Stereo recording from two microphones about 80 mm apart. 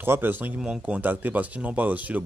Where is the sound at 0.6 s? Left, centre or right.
Centre.